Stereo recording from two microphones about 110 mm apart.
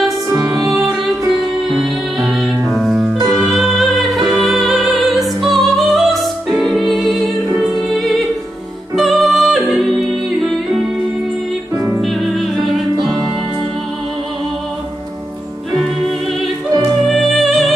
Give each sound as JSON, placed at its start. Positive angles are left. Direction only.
{"t": 0.3, "sound": "music", "side_deg": -30}
{"t": 0.7, "sound": "music", "side_deg": 0}
{"t": 11.7, "sound": "music", "side_deg": -30}
{"t": 12.0, "sound": "music", "side_deg": 0}
{"t": 17.0, "sound": "music", "side_deg": 0}